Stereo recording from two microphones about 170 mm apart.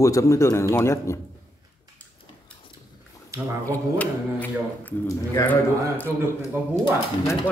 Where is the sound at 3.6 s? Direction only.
10° left (ahead or behind).